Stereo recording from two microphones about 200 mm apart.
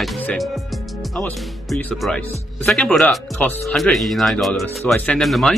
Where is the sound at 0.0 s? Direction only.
5° left (ahead or behind).